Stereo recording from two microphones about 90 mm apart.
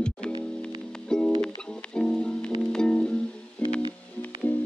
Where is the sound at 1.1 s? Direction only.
10° left (ahead or behind).